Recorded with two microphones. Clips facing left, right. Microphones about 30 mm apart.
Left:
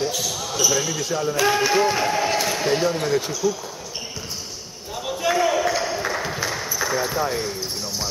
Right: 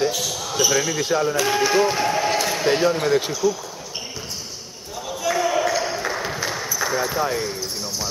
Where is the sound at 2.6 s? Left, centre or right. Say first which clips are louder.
Right 5 dB; centre.